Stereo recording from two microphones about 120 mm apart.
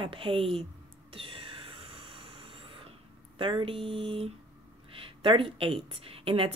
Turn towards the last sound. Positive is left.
turn(degrees=-50)  # may be behind; listen again after turning